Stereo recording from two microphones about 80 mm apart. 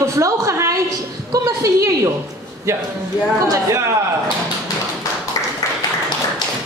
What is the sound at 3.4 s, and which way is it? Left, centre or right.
Speech, right.